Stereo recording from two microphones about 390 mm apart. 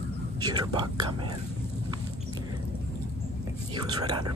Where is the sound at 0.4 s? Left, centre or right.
Centre.